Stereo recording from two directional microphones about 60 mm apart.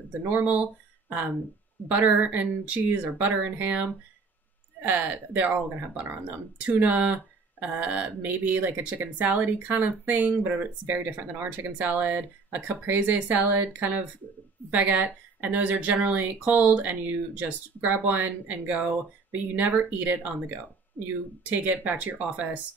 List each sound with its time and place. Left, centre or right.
0.3 s speech: right
1.0 s a sound: right
1.9 s speech: right